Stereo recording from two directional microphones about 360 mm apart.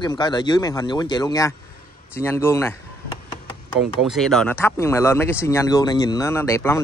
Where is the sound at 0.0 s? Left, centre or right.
Centre.